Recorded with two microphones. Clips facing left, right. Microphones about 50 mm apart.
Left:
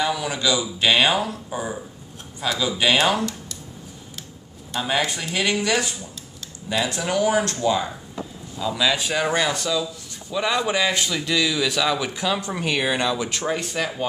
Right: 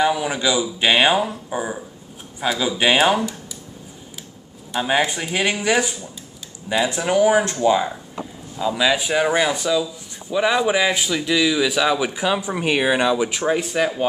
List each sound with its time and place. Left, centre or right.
0.0 s speech: centre
4.7 s speech: centre